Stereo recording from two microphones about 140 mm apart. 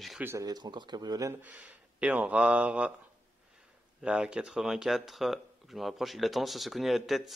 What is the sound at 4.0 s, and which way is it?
Speech, 5° right (ahead or behind).